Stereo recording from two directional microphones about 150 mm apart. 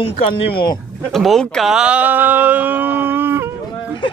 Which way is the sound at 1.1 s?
Centre (ahead or behind).